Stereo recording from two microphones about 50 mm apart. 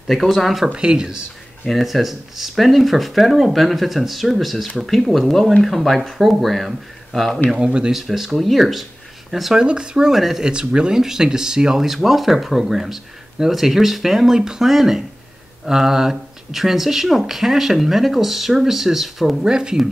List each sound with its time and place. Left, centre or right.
0.2 s speech: centre
0.7 s speech: centre
1.7 s speech: centre
7.5 s speech: centre
7.9 s speech: centre
9.6 s speech: centre
10.5 s speech: centre